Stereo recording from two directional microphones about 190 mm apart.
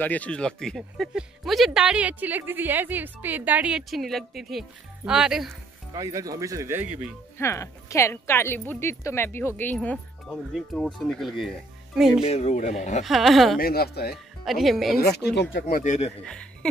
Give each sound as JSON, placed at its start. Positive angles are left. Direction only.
{"t": 0.0, "sound": "speech", "side_deg": 10}
{"t": 5.9, "sound": "speech", "side_deg": -20}
{"t": 7.3, "sound": "a woman's voice", "side_deg": 15}
{"t": 12.3, "sound": "speech", "side_deg": 35}
{"t": 13.0, "sound": "speech", "side_deg": 0}
{"t": 13.6, "sound": "speech", "side_deg": 55}
{"t": 14.1, "sound": "speech", "side_deg": 0}
{"t": 15.0, "sound": "speech", "side_deg": 55}
{"t": 15.7, "sound": "speech", "side_deg": 40}